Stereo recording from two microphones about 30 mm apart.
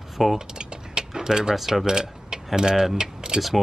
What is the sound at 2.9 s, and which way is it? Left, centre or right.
Typing, right.